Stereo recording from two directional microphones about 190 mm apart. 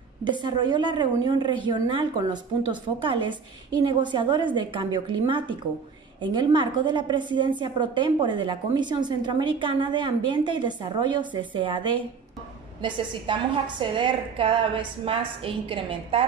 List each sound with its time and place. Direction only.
0.2 s a woman's voice: 25° right (ahead or behind)